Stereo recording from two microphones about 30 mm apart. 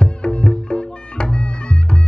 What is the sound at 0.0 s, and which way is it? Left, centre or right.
Music, left.